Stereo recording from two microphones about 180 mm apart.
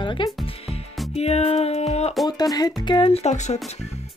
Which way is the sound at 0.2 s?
25° left (ahead or behind).